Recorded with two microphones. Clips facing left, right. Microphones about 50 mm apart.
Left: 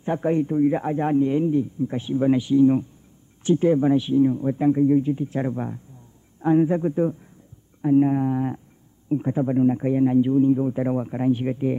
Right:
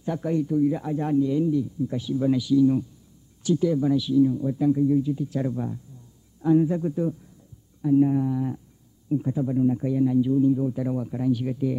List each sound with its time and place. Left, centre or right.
0.0 s a man's voice: left